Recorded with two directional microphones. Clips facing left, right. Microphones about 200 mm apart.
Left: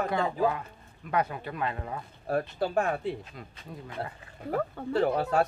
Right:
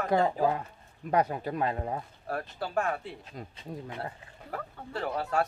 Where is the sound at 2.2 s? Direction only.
25° left (ahead or behind).